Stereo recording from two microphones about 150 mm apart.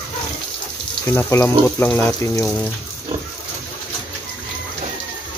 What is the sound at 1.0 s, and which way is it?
Speech, 15° left (ahead or behind).